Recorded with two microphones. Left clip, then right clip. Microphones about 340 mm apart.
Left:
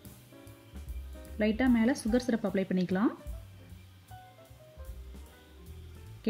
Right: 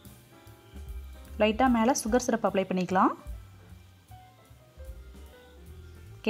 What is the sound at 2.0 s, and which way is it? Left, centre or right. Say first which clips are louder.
Speech: right 5 dB; right.